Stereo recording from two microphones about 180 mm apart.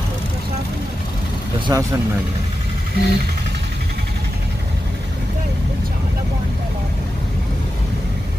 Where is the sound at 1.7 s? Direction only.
20° right (ahead or behind).